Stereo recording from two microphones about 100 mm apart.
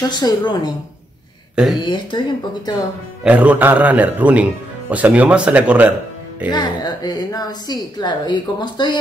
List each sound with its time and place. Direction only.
0.1 s a woman's voice: 45° left (ahead or behind)
1.5 s speech: 5° right (ahead or behind)
1.9 s a woman's voice: 50° left (ahead or behind)
3.3 s a man's voice: 15° right (ahead or behind)
6.5 s a woman's voice: 45° left (ahead or behind)